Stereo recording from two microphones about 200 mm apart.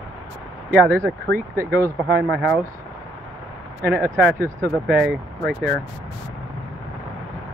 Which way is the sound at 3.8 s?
10° right (ahead or behind).